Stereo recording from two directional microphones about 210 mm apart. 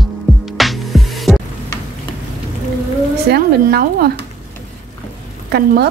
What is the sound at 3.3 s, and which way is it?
Speech, 45° right (ahead or behind).